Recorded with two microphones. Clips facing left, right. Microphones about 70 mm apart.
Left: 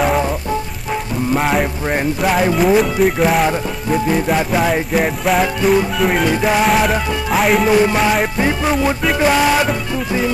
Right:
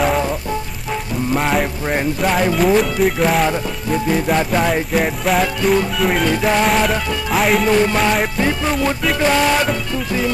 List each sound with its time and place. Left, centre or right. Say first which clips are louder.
0.0 s music: left 1 dB; centre
1.3 s speech: left 1 dB; centre
8.4 s music: left 2 dB; centre